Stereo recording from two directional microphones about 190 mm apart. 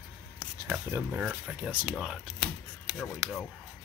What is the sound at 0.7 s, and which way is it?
Speech, 10° right (ahead or behind).